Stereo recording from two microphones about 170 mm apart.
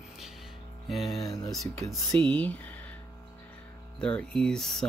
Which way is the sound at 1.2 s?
20° left (ahead or behind).